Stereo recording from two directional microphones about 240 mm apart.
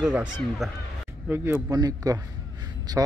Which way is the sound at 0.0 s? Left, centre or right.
Centre.